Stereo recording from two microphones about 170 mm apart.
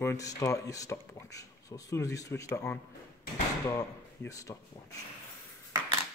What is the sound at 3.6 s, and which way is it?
Speech, 15° left (ahead or behind).